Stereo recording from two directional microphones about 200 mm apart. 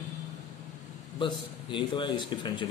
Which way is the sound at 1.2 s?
25° left (ahead or behind).